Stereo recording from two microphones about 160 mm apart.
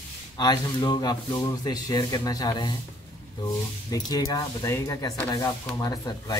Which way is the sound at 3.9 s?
25° left (ahead or behind).